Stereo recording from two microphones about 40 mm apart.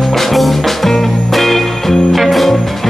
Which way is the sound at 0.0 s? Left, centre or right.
Centre.